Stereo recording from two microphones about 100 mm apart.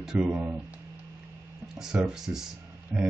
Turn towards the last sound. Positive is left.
turn(degrees=-5)  # may be behind; listen again after turning